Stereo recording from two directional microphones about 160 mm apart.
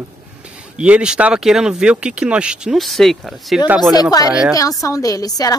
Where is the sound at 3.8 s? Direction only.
25° left (ahead or behind).